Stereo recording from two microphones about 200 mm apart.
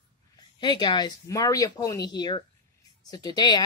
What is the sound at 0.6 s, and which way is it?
Speech, 20° left (ahead or behind).